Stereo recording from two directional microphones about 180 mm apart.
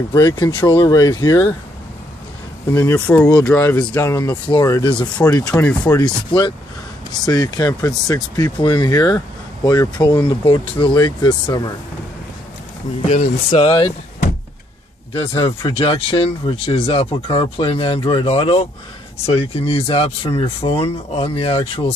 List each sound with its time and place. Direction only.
0.1 s speech: 20° left (ahead or behind)
2.7 s speech: 15° left (ahead or behind)
5.1 s speech: 10° left (ahead or behind)
6.0 s speech: 25° left (ahead or behind)
13.0 s speech: 45° left (ahead or behind)
13.5 s speech: 30° left (ahead or behind)
15.6 s speech: 30° left (ahead or behind)